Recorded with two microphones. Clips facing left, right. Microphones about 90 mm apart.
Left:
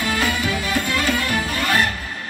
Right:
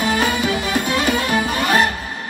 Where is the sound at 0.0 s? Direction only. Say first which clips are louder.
Right 3 dB; 20° right (ahead or behind).